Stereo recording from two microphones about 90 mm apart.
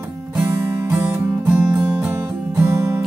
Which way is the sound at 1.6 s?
5° right (ahead or behind).